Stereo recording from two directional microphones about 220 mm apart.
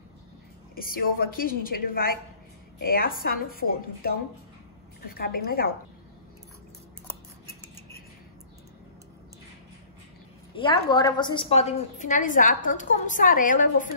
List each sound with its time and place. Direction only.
0.7 s a woman's voice: 40° left (ahead or behind)
10.5 s a woman's voice: 20° left (ahead or behind); by 13.8 s 35° left (ahead or behind)